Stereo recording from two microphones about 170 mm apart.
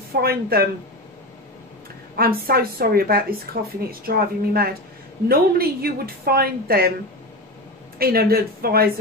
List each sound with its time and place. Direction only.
0.2 s a woman's voice: 65° right (ahead or behind)
2.1 s a woman's voice: 60° right (ahead or behind)
8.0 s a woman's voice: 65° right (ahead or behind)